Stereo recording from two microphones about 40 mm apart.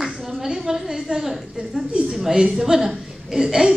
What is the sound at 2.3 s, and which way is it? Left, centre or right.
Speech, centre.